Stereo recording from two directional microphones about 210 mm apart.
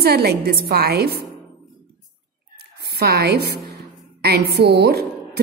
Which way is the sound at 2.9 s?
50° right (ahead or behind).